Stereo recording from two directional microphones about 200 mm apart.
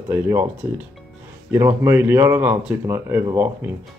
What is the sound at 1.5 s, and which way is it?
Speech, 15° right (ahead or behind).